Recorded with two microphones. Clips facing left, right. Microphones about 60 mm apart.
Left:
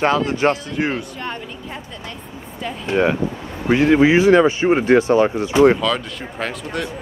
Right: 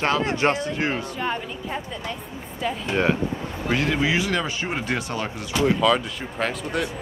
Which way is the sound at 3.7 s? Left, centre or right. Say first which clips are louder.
Left 10 dB; left.